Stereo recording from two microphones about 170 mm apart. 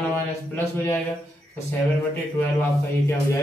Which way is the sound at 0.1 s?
10° left (ahead or behind).